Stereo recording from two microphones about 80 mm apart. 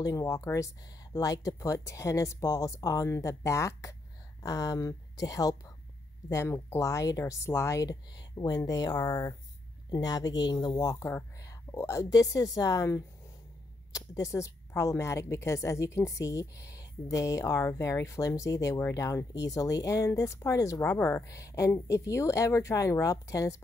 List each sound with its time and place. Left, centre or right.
0.0 s a woman's voice: left
9.8 s speech: left
10.8 s a woman's voice: left